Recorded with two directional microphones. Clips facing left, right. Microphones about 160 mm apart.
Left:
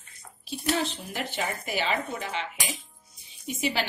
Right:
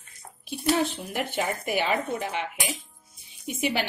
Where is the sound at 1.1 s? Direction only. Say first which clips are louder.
Right 3 dB; 55° right (ahead or behind).